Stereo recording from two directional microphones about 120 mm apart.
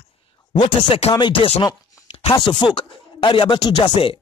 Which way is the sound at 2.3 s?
40° left (ahead or behind).